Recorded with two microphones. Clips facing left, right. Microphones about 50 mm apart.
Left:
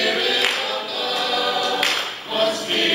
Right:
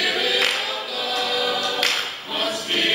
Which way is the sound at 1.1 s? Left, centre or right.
Centre.